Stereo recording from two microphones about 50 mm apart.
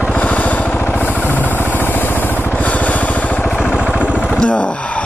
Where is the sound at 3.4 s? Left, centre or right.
Left.